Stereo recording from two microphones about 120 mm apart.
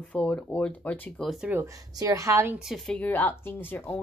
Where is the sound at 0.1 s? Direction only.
10° left (ahead or behind).